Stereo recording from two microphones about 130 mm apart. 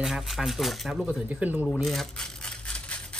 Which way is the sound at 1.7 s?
Centre (ahead or behind).